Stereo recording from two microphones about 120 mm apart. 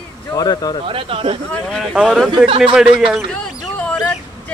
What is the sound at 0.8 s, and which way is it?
Speech, 50° right (ahead or behind).